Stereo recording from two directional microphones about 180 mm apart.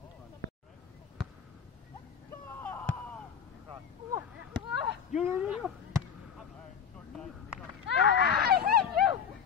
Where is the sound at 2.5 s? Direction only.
10° left (ahead or behind).